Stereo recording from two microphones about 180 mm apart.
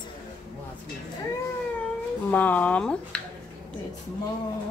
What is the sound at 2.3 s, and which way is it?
Speech, 10° left (ahead or behind).